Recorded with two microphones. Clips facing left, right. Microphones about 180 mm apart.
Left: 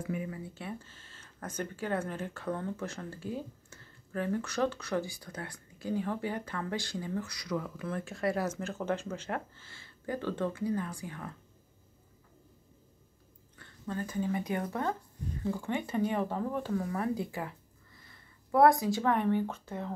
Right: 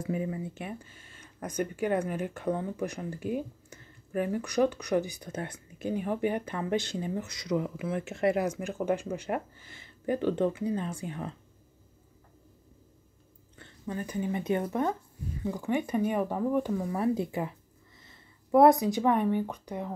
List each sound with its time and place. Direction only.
0.0 s speech: 25° right (ahead or behind)
8.0 s speech: 25° right (ahead or behind)
13.6 s speech: 15° right (ahead or behind)